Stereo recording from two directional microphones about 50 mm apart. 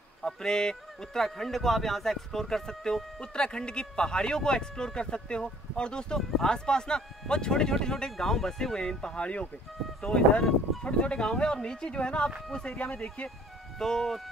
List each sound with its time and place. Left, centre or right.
0.2 s speech: centre
10.1 s speech: centre
10.8 s speech: left